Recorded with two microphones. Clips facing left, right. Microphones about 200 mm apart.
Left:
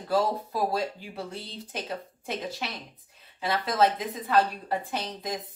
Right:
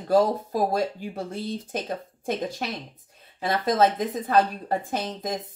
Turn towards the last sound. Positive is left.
turn(degrees=-45)  # may be behind; listen again after turning